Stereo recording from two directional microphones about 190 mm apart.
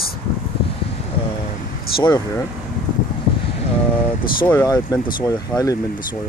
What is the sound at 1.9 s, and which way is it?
Speech, 25° left (ahead or behind).